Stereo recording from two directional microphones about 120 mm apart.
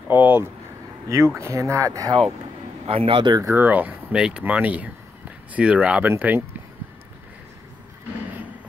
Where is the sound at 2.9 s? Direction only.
50° right (ahead or behind).